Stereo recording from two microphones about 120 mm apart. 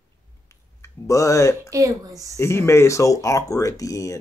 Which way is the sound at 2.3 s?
20° left (ahead or behind).